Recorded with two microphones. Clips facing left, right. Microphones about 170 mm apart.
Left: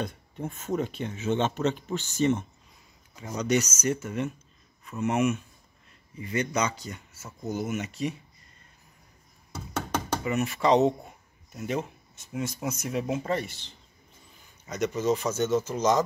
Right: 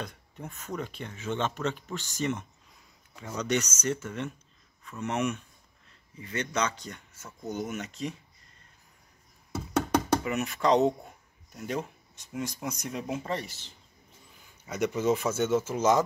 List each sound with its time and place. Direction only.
0.0 s speech: 25° left (ahead or behind)
3.3 s speech: 10° left (ahead or behind)
10.2 s speech: centre (ahead or behind)
14.7 s speech: 10° right (ahead or behind)